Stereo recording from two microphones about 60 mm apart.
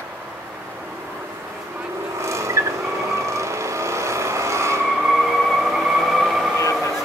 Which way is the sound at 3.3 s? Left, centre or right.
Right.